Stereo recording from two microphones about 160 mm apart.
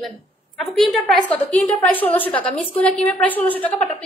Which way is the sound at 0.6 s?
Centre (ahead or behind).